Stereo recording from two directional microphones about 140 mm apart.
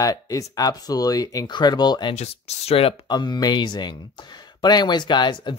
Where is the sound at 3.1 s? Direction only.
30° left (ahead or behind).